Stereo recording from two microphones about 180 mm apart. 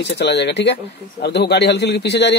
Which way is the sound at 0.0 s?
70° left (ahead or behind).